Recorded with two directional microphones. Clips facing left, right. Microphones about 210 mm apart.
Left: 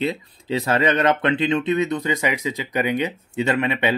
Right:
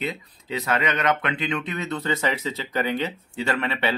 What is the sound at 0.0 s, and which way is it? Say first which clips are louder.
Speech: left 6 dB; 30° left (ahead or behind).